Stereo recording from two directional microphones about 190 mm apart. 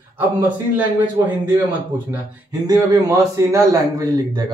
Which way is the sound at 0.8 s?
10° right (ahead or behind).